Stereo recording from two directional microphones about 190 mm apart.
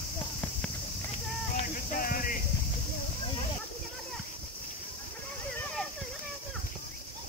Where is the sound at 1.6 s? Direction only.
45° left (ahead or behind).